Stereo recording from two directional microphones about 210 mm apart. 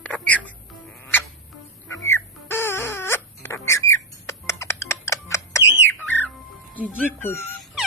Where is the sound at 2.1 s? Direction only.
10° left (ahead or behind).